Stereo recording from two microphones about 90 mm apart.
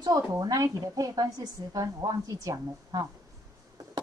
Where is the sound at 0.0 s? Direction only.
40° right (ahead or behind).